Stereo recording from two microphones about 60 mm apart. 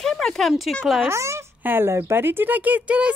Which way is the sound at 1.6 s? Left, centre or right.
Right.